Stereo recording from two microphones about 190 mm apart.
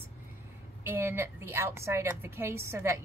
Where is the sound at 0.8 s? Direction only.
10° right (ahead or behind).